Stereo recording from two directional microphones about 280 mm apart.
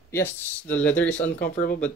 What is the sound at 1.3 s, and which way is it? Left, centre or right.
Speech, left.